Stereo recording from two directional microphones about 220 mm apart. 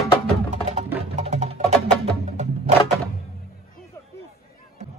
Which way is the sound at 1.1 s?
30° right (ahead or behind).